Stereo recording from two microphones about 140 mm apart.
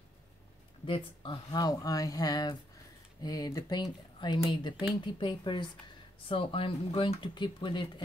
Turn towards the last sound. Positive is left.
turn(degrees=35)  # may be behind; listen again after turning